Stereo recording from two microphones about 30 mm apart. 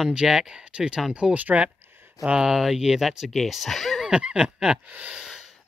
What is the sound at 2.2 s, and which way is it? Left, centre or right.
Speech, right.